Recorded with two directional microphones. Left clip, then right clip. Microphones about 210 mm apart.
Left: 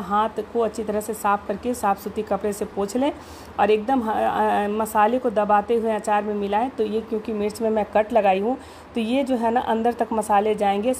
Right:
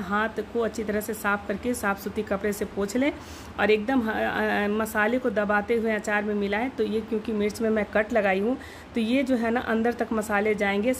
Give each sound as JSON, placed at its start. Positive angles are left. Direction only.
{"t": 0.1, "sound": "a woman's voice", "side_deg": 0}